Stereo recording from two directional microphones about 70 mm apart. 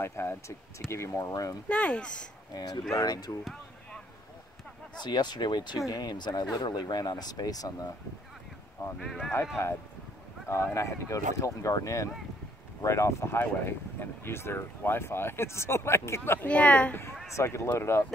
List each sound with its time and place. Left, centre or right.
0.0 s speech: left
1.7 s speech: centre
2.5 s speech: left
5.0 s speech: left
5.9 s speech: left
9.0 s speech: centre
10.5 s speech: left
16.3 s speech: centre
17.4 s speech: left